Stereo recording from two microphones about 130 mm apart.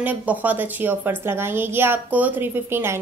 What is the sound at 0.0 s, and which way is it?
Speech, 15° right (ahead or behind).